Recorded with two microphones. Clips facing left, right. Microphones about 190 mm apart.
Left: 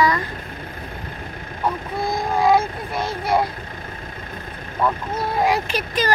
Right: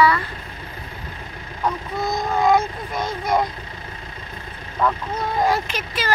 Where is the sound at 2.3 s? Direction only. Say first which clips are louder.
Left 1 dB; 10° left (ahead or behind).